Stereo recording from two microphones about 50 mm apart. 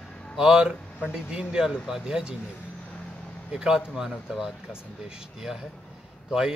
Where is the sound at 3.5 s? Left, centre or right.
Centre.